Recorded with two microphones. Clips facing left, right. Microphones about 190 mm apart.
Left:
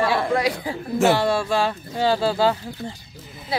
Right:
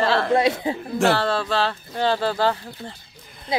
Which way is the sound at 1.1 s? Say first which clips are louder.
Left 2 dB; 15° left (ahead or behind).